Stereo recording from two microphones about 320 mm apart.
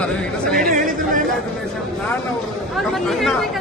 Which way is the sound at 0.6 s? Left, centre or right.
Right.